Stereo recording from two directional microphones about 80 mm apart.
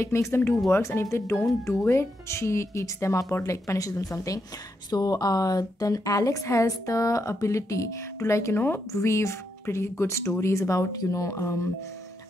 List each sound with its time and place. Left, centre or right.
0.0 s a woman's voice: left